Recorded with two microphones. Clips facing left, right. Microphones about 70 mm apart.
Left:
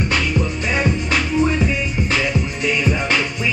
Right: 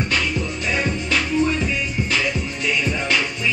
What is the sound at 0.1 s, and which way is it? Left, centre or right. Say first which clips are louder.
Music: left 3 dB; centre.